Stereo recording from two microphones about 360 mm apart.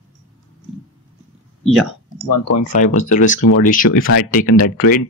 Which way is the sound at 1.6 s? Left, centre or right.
Centre.